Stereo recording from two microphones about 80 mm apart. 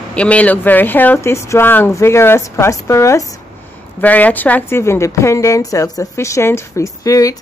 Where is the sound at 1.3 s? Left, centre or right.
Left.